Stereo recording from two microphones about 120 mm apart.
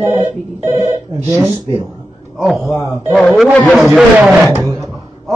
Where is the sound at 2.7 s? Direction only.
25° left (ahead or behind).